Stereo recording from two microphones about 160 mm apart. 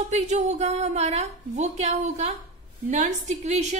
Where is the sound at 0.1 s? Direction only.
45° right (ahead or behind).